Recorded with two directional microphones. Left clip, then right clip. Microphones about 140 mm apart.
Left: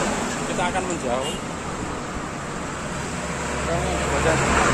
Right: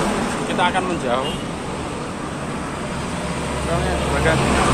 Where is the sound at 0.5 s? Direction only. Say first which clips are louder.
Right 6 dB; 5° left (ahead or behind).